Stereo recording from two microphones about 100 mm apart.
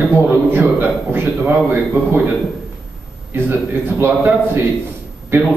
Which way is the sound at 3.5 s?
20° right (ahead or behind).